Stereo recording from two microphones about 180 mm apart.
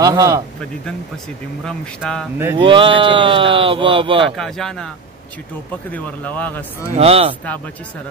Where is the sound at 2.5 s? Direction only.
30° right (ahead or behind).